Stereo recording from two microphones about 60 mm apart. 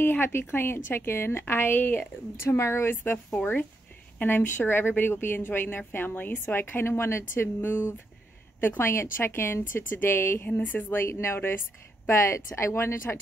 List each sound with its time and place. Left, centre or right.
0.0 s a woman's voice: left
1.8 s speech: left
2.5 s speech: left
2.9 s a woman's voice: left
4.2 s a woman's voice: left
11.0 s speech: left
12.1 s speech: left